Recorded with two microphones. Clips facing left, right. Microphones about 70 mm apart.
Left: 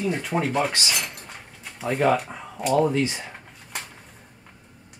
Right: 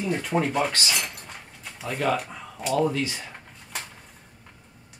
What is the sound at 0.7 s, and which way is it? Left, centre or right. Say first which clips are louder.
Speech: left 1 dB; centre.